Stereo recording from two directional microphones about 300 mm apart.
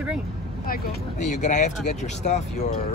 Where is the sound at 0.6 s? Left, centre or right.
Left.